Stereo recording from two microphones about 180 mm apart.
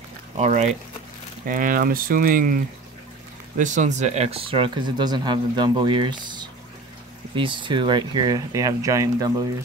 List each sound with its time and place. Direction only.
0.4 s speech: 40° right (ahead or behind)
3.5 s speech: 45° right (ahead or behind); by 9.3 s 20° right (ahead or behind)